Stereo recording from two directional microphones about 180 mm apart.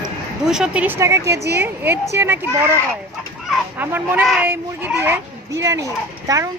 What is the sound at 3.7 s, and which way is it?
Speech, 10° right (ahead or behind).